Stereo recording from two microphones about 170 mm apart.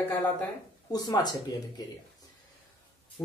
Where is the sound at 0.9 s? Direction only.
25° left (ahead or behind).